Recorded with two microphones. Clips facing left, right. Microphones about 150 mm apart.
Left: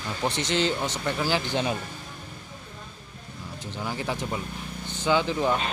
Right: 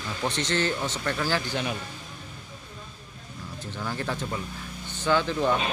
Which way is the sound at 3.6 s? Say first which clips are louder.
Even; 15° left (ahead or behind).